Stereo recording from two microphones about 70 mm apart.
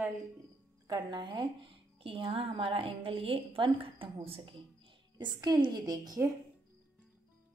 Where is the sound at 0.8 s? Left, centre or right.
Right.